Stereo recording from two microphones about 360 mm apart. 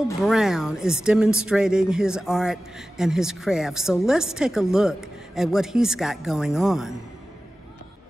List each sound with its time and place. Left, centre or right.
0.2 s speech: centre